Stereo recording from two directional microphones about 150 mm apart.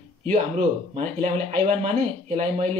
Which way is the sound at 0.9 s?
50° right (ahead or behind).